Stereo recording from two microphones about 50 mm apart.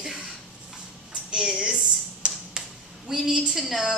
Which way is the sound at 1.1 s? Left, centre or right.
Centre.